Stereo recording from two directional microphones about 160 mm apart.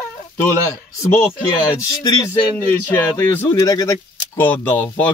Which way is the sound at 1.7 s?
20° left (ahead or behind).